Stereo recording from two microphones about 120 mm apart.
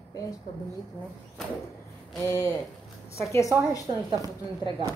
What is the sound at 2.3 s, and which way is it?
Speech, 30° left (ahead or behind).